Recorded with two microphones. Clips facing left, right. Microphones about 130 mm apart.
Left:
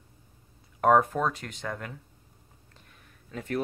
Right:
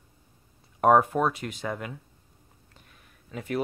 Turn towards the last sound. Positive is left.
turn(degrees=-10)  # may be behind; listen again after turning